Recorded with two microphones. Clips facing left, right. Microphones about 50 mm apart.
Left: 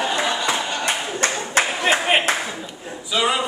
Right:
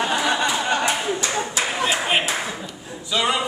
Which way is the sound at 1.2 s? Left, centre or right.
Left.